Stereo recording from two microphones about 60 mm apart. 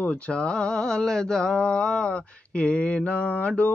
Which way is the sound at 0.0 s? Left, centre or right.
Centre.